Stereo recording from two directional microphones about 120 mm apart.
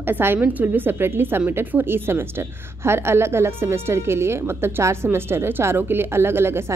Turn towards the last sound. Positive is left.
turn(degrees=-20)  # may be behind; listen again after turning